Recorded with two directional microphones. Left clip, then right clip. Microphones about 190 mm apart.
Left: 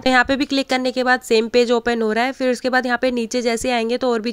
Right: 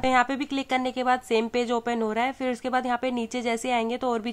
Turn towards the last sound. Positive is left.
turn(degrees=20)  # may be behind; listen again after turning